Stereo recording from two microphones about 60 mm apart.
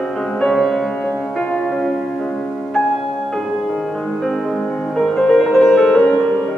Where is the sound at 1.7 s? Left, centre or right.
Centre.